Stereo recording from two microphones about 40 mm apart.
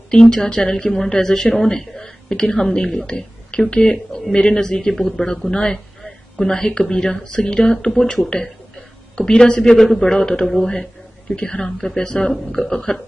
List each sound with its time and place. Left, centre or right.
0.1 s a woman's voice: centre
9.8 s a man's voice: centre
10.0 s speech: centre
11.3 s speech: left